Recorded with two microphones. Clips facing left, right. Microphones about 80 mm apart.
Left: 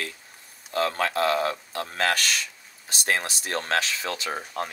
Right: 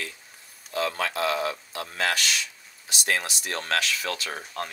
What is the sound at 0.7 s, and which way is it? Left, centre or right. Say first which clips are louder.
Speech: left 3 dB; left.